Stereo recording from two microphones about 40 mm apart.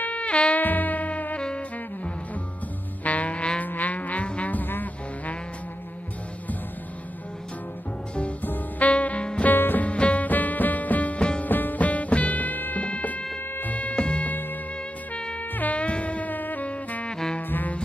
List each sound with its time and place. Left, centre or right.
0.0 s music: left
0.6 s music: left
3.0 s music: left
3.6 s music: left
8.4 s music: left
9.5 s music: left
9.8 s music: left
10.2 s music: left
11.1 s music: left
11.4 s music: left
12.8 s music: left
15.5 s music: left
16.6 s saxophone: left
17.4 s brass instrument: left